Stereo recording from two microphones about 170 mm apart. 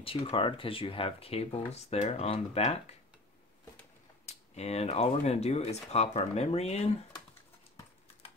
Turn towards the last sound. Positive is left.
turn(degrees=40)  # may be behind; listen again after turning